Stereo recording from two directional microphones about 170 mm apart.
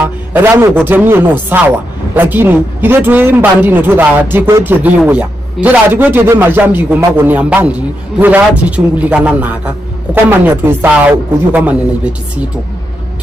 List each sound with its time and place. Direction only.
0.0 s a man's voice: 10° right (ahead or behind)